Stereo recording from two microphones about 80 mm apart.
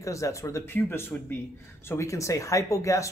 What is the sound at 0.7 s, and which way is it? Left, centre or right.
Speech, left.